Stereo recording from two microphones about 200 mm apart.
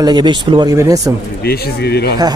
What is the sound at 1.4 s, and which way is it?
Speech, 50° left (ahead or behind).